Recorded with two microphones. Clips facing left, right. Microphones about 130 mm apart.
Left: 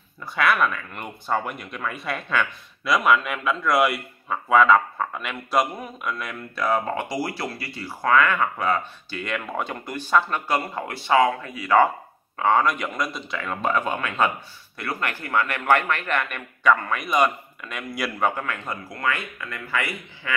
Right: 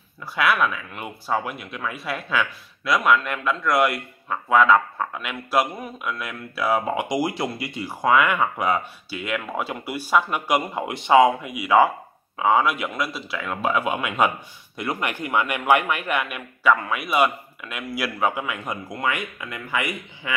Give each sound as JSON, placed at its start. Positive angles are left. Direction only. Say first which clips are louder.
{"t": 0.2, "sound": "speech", "louder": "even", "side_deg": -5}